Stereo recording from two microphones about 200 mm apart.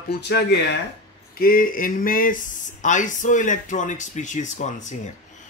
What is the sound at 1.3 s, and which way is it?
Speech, 45° left (ahead or behind).